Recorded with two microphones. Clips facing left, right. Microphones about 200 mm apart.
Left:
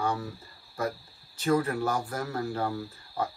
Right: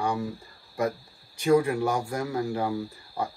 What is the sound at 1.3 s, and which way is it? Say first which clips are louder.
Speech: right 4 dB; 15° right (ahead or behind).